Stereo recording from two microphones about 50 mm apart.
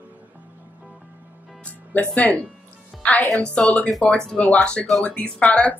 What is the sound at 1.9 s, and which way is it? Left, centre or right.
Speech, left.